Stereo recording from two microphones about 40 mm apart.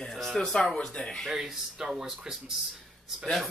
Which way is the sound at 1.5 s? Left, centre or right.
Centre.